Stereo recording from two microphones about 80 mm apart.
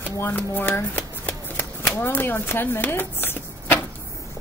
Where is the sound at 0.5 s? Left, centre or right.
Left.